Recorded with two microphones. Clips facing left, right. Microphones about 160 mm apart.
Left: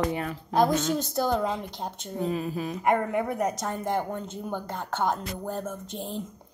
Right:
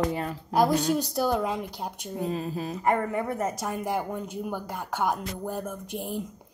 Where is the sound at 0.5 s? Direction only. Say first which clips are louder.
Right 1 dB; 10° right (ahead or behind).